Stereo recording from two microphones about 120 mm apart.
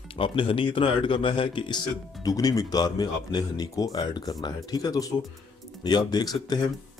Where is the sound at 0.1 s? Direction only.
45° left (ahead or behind).